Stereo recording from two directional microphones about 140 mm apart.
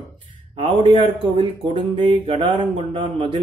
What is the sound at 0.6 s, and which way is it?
Speech, 40° right (ahead or behind).